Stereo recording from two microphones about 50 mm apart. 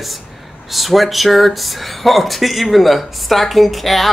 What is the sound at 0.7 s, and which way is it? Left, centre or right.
Speech, centre.